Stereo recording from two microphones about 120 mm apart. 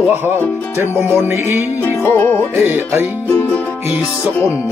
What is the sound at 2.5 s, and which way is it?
Speech, 20° right (ahead or behind).